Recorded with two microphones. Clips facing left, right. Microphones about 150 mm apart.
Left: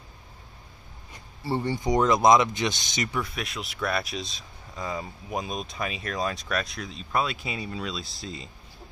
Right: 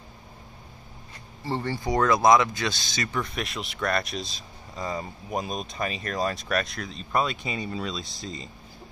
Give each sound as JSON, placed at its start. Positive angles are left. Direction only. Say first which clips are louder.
{"t": 1.4, "sound": "speech", "louder": "left 2 dB", "side_deg": 15}
{"t": 3.2, "sound": "speech", "louder": "right 1 dB", "side_deg": 0}